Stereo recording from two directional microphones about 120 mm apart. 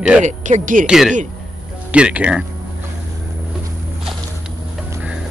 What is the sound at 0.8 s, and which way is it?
Speech, 5° right (ahead or behind).